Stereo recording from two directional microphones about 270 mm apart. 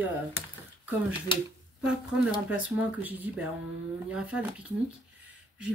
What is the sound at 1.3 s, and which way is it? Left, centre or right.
Speech, centre.